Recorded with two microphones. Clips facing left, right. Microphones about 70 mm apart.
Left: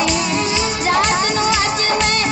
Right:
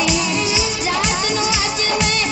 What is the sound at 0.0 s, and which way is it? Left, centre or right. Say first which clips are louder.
Music: left 1 dB; left.